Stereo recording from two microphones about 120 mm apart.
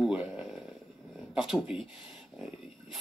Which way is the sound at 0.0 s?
Centre (ahead or behind).